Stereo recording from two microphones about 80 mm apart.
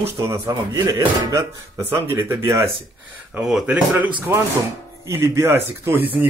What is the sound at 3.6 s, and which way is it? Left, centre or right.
Speech, centre.